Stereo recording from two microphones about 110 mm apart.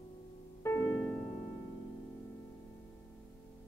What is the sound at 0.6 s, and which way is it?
Music, 30° left (ahead or behind).